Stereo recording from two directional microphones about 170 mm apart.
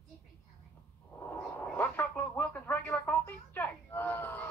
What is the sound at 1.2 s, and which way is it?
Radio, 10° left (ahead or behind).